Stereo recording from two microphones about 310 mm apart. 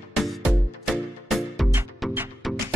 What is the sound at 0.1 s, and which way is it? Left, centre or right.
Music, centre.